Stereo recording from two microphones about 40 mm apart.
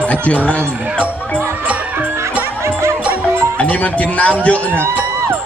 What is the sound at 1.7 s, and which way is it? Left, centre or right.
Honk, right.